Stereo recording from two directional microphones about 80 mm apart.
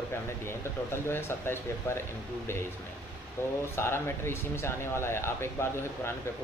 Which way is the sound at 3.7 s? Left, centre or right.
Left.